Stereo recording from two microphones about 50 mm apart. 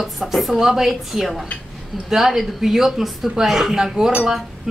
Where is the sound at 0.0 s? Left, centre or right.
Centre.